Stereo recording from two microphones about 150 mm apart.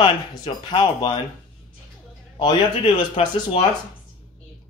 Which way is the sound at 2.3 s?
30° left (ahead or behind).